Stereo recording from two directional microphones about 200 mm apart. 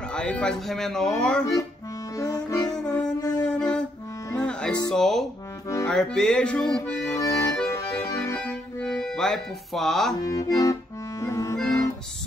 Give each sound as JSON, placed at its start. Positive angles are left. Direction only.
{"t": 0.1, "sound": "speech", "side_deg": 5}
{"t": 2.1, "sound": "music", "side_deg": 15}
{"t": 2.7, "sound": "music", "side_deg": 5}
{"t": 3.2, "sound": "music", "side_deg": 20}
{"t": 3.4, "sound": "music", "side_deg": 5}
{"t": 4.9, "sound": "speech", "side_deg": 0}
{"t": 7.2, "sound": "accordion", "side_deg": 15}
{"t": 10.2, "sound": "accordion", "side_deg": 15}
{"t": 11.5, "sound": "music", "side_deg": 5}